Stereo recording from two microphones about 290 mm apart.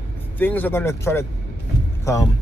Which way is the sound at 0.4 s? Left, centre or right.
Centre.